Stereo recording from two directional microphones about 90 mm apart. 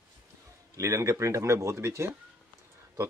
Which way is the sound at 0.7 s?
35° right (ahead or behind).